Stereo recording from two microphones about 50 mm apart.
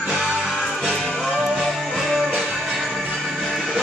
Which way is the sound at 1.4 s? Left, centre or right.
Centre.